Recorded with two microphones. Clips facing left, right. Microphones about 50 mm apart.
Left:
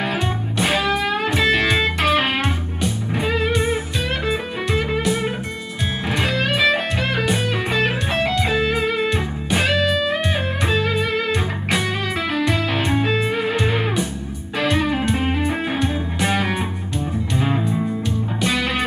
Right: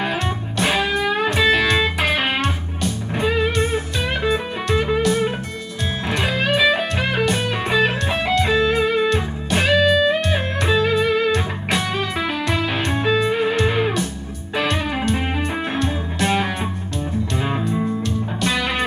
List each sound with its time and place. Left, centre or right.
1.0 s music: centre
3.5 s music: centre
5.0 s music: centre
6.2 s music: centre
13.0 s music: centre
14.7 s music: centre
17.4 s music: centre